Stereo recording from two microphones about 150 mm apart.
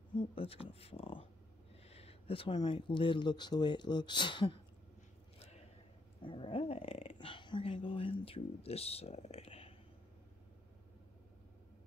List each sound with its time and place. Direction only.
0.1 s speech: 35° left (ahead or behind)
6.2 s speech: 35° left (ahead or behind)